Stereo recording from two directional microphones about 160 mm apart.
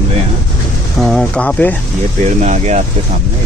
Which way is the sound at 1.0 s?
5° left (ahead or behind).